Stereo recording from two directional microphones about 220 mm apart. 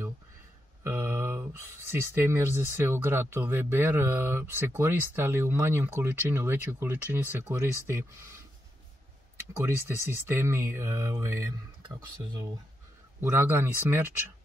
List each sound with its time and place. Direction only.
0.8 s speech: 10° right (ahead or behind)
9.8 s speech: 10° right (ahead or behind)
13.2 s speech: 10° right (ahead or behind)